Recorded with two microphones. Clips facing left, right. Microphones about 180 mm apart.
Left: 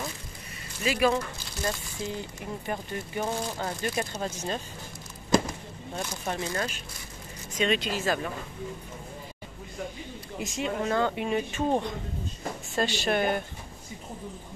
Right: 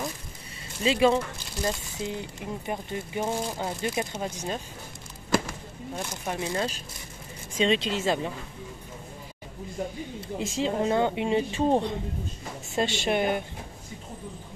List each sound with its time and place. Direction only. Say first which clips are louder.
0.8 s speech: right 3 dB; 25° right (ahead or behind)
5.9 s speech: even; 10° right (ahead or behind)
7.5 s speech: right 2 dB; 25° right (ahead or behind)
10.4 s speech: right 3 dB; 30° right (ahead or behind)